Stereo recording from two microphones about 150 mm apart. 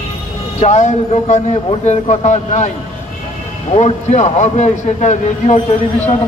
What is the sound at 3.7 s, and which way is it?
A man's voice, 50° left (ahead or behind).